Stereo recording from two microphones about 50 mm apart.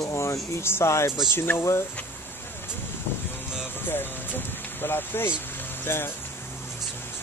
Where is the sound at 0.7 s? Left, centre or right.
Left.